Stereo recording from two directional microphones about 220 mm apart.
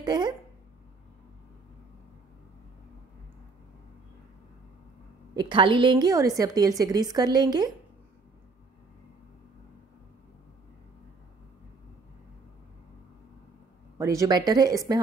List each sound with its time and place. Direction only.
0.0 s speech: 20° right (ahead or behind)
5.3 s a woman's voice: 20° right (ahead or behind)
13.9 s a woman's voice: 15° right (ahead or behind)